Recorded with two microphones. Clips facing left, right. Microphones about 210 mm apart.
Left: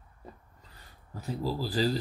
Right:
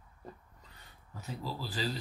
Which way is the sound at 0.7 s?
35° left (ahead or behind).